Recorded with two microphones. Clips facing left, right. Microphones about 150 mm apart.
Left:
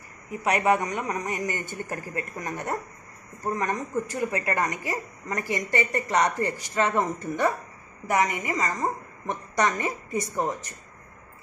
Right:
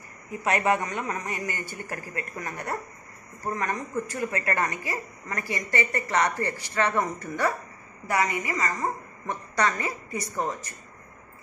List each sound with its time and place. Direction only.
0.4 s a man's voice: 15° left (ahead or behind)